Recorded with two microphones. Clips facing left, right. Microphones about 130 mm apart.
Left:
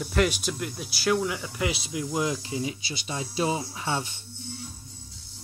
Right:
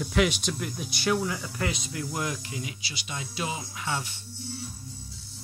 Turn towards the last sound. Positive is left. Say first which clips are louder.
# left 3 dB
turn(degrees=25)  # may be behind; listen again after turning